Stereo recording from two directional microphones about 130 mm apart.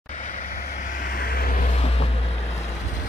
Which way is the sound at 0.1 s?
70° left (ahead or behind).